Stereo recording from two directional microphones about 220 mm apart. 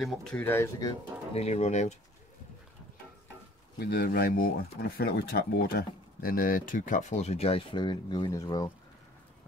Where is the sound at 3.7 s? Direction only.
45° left (ahead or behind).